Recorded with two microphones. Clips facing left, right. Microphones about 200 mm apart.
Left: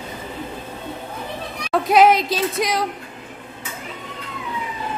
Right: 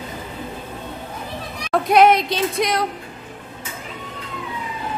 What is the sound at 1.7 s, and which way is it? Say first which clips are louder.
Speech: even; centre (ahead or behind).